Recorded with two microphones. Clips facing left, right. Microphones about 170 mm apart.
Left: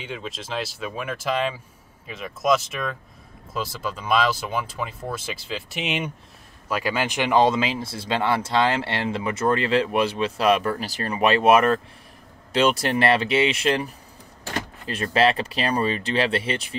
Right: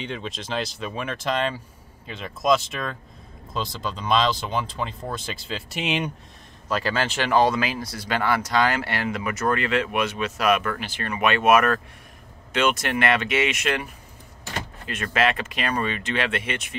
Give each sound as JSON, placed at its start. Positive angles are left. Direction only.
{"t": 0.0, "sound": "speech", "side_deg": 5}
{"t": 6.7, "sound": "speech", "side_deg": 10}
{"t": 14.9, "sound": "speech", "side_deg": 35}